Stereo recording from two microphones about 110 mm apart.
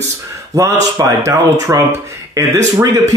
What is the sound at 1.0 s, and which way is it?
A man's voice, 25° right (ahead or behind).